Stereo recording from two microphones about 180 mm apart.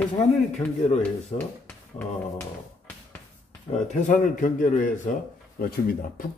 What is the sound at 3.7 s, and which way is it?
Speech, 40° left (ahead or behind).